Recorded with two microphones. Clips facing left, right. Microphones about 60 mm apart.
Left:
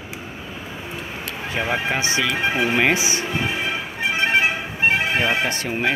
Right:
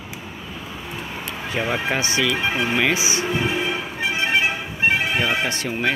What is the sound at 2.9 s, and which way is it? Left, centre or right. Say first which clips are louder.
Speech: even; left.